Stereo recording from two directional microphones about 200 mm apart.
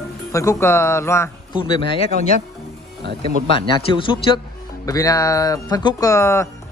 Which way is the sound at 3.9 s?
25° left (ahead or behind).